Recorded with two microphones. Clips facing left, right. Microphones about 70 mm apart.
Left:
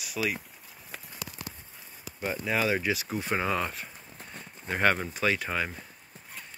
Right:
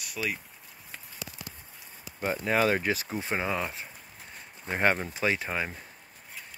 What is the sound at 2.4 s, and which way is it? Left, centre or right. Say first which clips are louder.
Speech: right 2 dB; right.